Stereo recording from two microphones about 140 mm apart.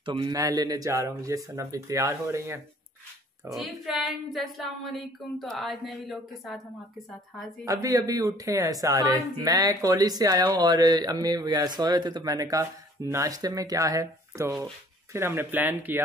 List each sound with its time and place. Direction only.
0.0 s a man's voice: 40° right (ahead or behind)
0.3 s speech: 25° right (ahead or behind)
3.4 s speech: centre (ahead or behind)
7.6 s speech: 25° right (ahead or behind)